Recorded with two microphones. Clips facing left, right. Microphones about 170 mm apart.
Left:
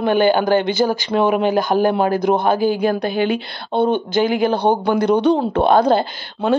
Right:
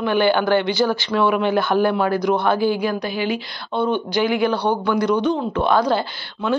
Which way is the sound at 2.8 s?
50° left (ahead or behind).